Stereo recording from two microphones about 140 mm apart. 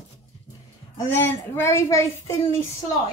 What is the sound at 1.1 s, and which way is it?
A woman's voice, 15° left (ahead or behind).